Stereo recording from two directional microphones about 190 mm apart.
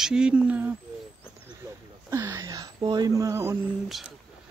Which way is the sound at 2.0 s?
15° right (ahead or behind).